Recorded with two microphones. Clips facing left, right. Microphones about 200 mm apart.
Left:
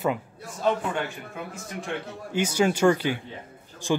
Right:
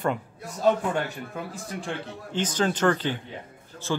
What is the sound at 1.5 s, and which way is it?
Speech, 35° right (ahead or behind).